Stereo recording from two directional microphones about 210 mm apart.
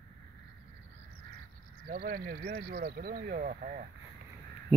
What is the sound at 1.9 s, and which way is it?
Speech, 40° right (ahead or behind).